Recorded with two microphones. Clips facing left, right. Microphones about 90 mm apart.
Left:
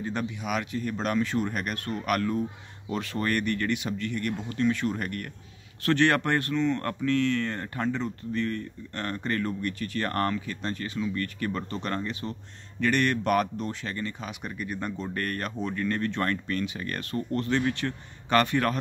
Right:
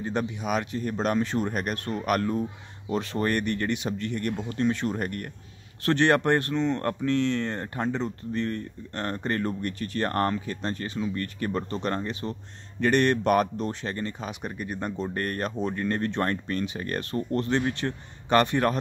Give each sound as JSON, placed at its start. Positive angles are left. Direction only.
{"t": 0.0, "sound": "speech", "side_deg": -25}